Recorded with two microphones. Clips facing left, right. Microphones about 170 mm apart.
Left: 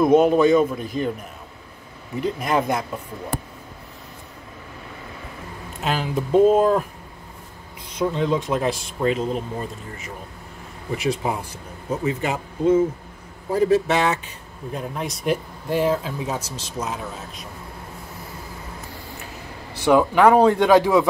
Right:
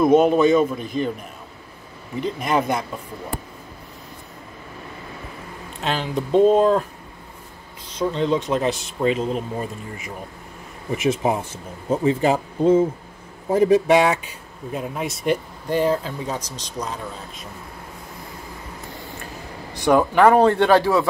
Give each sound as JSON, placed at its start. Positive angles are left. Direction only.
{"t": 0.0, "sound": "speech", "side_deg": 0}
{"t": 2.1, "sound": "speech", "side_deg": 0}
{"t": 5.8, "sound": "speech", "side_deg": 5}
{"t": 8.0, "sound": "speech", "side_deg": 5}
{"t": 9.6, "sound": "speech", "side_deg": -15}
{"t": 13.5, "sound": "speech", "side_deg": -20}
{"t": 19.9, "sound": "speech", "side_deg": 0}